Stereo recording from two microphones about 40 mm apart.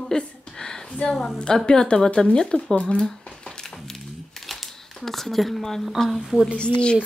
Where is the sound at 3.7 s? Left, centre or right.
Centre.